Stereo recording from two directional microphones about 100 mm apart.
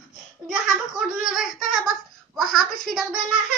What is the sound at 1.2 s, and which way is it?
Child singing, centre (ahead or behind).